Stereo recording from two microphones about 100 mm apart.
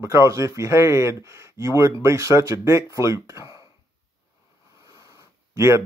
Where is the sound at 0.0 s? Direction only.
30° right (ahead or behind).